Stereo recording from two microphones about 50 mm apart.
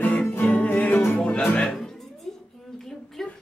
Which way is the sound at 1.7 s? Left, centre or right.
Centre.